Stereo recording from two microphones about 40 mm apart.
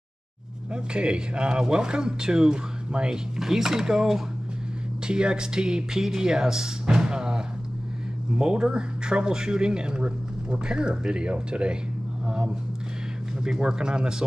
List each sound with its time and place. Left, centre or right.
0.9 s speech: right
3.3 s speech: centre; by 11.8 s right
13.4 s speech: centre